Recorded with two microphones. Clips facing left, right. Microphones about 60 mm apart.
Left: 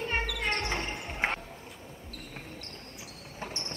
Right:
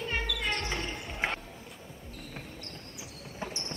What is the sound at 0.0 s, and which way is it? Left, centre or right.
Basketball bounce, left.